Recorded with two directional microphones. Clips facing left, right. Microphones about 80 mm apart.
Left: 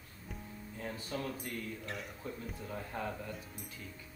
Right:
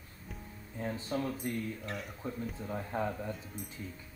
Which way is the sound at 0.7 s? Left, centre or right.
Right.